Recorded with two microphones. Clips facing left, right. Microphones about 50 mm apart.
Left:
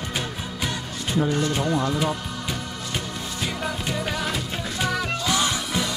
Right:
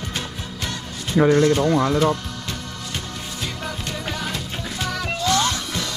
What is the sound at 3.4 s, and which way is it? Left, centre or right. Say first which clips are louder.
Music: left 2 dB; centre.